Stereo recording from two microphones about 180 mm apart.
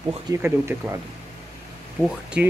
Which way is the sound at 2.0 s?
5° right (ahead or behind).